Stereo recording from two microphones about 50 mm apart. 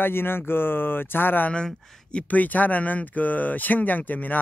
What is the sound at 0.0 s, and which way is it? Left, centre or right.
Speech, left.